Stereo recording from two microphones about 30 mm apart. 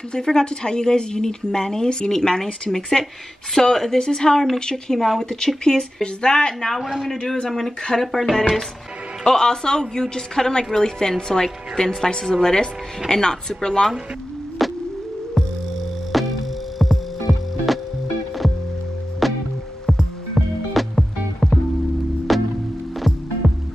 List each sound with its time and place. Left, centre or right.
0.2 s a woman's voice: left
6.8 s a man's voice: centre
7.2 s a woman's voice: left
7.4 s a woman's voice: centre
14.6 s a sound: centre
16.1 s music: centre
19.2 s music: centre